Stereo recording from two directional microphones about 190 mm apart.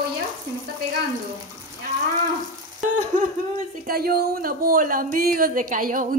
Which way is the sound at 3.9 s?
55° right (ahead or behind).